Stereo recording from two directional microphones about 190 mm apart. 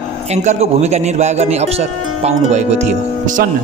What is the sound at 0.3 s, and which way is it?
Speech, 35° right (ahead or behind).